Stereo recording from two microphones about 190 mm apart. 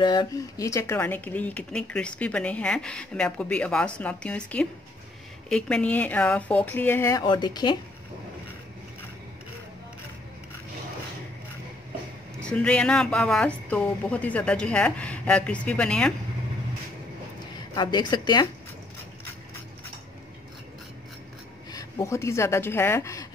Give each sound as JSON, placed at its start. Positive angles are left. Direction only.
{"t": 0.0, "sound": "speech", "side_deg": 20}
{"t": 12.4, "sound": "speech", "side_deg": 5}
{"t": 17.7, "sound": "a woman's voice", "side_deg": 25}
{"t": 21.7, "sound": "speech", "side_deg": 15}